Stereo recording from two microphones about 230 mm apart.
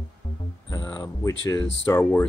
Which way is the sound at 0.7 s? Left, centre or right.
Centre.